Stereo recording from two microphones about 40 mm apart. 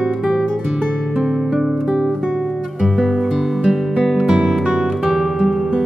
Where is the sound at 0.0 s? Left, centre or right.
Centre.